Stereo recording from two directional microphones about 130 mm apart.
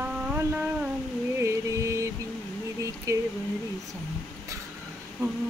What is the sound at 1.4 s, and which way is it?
Music, 25° right (ahead or behind).